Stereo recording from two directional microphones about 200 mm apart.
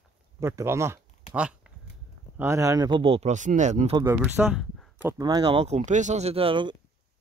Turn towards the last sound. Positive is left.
turn(degrees=-25)  # may be behind; listen again after turning